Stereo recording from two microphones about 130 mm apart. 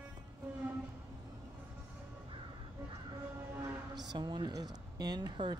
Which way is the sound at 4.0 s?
35° right (ahead or behind).